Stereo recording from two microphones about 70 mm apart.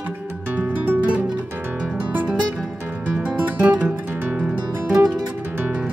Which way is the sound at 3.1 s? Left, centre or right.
Centre.